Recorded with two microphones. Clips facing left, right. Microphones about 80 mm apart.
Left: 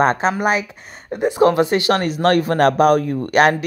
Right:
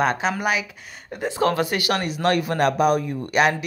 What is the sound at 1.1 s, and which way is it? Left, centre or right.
Speech, left.